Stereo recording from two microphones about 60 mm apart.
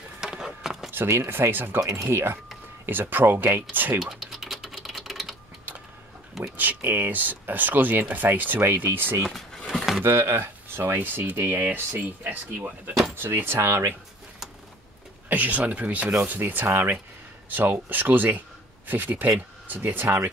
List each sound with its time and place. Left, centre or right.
0.2 s a sound: centre
0.9 s speech: right
1.8 s speech: right
2.0 s speech: right
4.0 s typewriter: centre
6.5 s speech: right
15.2 s speech: right